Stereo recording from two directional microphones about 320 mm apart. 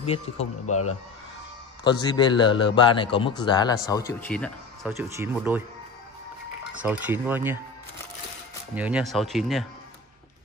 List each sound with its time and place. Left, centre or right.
0.0 s a man's voice: centre
0.7 s speech: left
1.9 s a man's voice: centre
4.9 s speech: centre
6.8 s speech: centre
8.7 s speech: centre